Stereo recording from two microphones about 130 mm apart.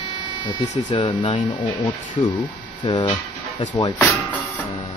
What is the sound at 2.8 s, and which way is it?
Speech, 35° left (ahead or behind).